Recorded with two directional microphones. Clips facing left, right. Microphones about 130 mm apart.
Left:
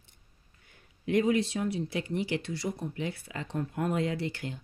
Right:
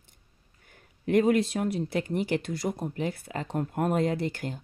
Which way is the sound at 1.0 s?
55° right (ahead or behind).